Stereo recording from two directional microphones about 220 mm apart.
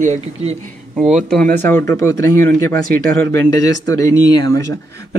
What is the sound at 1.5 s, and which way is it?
Speech, 10° left (ahead or behind).